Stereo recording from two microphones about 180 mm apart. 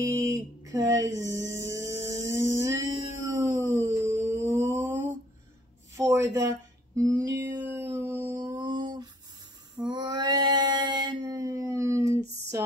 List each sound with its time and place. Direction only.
0.1 s speech: 20° right (ahead or behind)
1.4 s music: 15° right (ahead or behind)
2.8 s music: 40° left (ahead or behind)
3.3 s a sound: 15° right (ahead or behind)
5.9 s speech: 15° right (ahead or behind)
7.0 s a sound: 15° right (ahead or behind)
9.8 s female singing: 25° right (ahead or behind)